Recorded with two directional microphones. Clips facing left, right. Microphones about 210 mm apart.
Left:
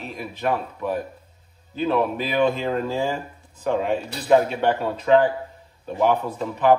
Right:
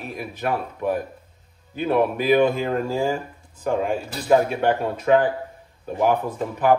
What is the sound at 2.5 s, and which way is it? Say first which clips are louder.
Speech: right 1 dB; 10° right (ahead or behind).